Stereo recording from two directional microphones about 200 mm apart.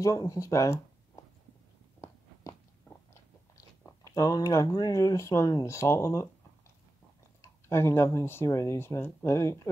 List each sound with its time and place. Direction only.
0.0 s speech: 15° left (ahead or behind)
2.4 s biting: 15° left (ahead or behind)
3.8 s speech: 15° left (ahead or behind)
7.4 s speech: 10° left (ahead or behind)